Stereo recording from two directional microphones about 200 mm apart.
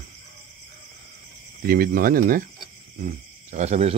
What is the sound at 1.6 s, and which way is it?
Speech, 45° right (ahead or behind).